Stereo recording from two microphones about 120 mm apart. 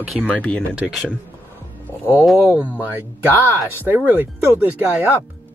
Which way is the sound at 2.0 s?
20° left (ahead or behind).